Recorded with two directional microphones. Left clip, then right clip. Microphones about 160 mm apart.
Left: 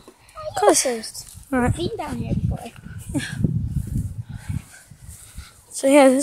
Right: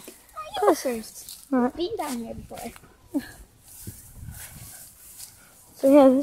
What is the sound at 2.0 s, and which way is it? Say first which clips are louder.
Speech: left 2 dB; 30° left (ahead or behind).